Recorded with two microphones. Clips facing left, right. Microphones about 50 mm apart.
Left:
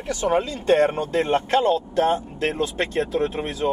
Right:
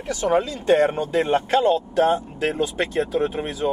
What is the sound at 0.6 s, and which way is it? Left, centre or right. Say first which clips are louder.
Speech: left 1 dB; centre.